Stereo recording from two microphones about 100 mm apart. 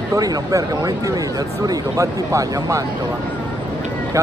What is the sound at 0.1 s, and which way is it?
Speech, 35° right (ahead or behind).